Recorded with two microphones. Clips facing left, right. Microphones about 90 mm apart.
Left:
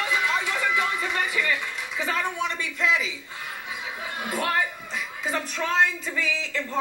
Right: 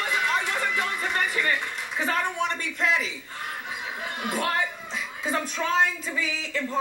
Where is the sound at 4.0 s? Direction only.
70° right (ahead or behind).